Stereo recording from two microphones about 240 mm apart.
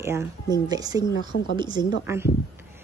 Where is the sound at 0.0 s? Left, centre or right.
Centre.